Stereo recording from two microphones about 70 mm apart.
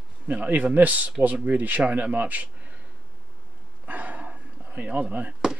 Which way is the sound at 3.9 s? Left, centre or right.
Right.